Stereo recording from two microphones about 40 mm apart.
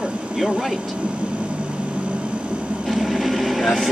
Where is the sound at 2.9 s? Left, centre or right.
Centre.